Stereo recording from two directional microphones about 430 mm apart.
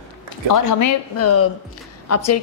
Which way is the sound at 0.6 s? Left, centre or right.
Left.